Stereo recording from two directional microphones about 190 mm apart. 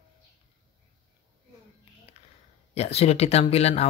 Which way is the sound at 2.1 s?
30° left (ahead or behind).